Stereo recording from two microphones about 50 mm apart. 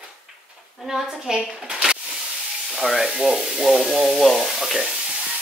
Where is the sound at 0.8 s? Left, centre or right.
Centre.